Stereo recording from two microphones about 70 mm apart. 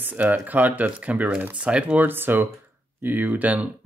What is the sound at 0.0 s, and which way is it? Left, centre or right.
Speech, right.